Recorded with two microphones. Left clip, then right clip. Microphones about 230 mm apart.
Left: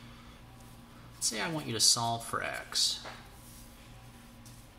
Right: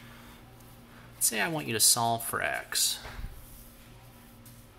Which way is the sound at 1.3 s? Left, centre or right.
Right.